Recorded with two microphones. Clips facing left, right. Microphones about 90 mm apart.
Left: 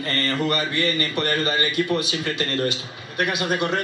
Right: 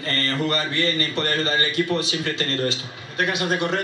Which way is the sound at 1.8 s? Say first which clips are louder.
Even; 15° left (ahead or behind).